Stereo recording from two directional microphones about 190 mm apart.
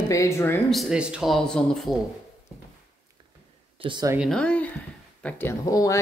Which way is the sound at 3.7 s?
25° right (ahead or behind).